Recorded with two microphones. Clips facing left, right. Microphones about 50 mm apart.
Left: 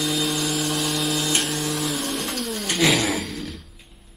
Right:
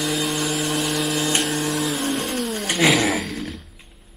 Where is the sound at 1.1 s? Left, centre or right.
Right.